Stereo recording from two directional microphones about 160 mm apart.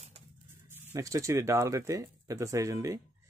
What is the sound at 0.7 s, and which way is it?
Speech, 15° right (ahead or behind).